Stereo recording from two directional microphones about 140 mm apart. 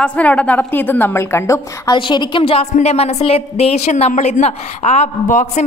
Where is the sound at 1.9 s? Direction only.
35° left (ahead or behind).